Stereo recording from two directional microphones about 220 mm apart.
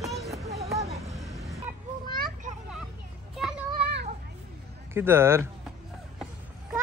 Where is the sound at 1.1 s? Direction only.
Centre (ahead or behind).